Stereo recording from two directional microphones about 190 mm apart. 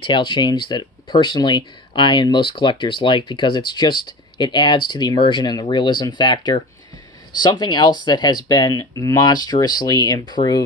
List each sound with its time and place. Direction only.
0.0 s speech: 25° left (ahead or behind)